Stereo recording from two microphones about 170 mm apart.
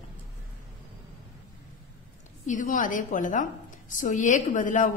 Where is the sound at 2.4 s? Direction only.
50° left (ahead or behind).